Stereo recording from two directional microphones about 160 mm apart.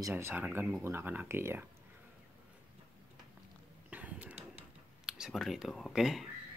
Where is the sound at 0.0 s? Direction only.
15° right (ahead or behind).